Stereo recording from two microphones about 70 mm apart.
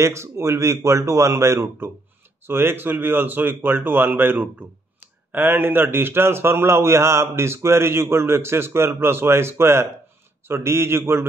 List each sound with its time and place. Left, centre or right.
0.0 s a man's voice: right